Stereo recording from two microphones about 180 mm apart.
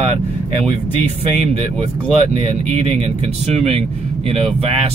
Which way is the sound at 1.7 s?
35° right (ahead or behind).